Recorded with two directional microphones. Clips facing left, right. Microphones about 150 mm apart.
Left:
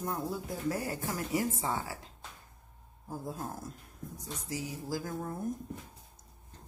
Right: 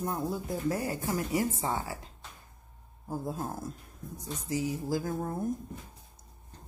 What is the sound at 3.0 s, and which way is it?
Speech, 30° right (ahead or behind).